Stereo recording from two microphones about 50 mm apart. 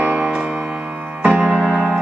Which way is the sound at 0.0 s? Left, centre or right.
Right.